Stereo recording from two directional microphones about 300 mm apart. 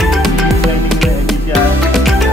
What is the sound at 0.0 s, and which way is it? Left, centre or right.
Music, centre.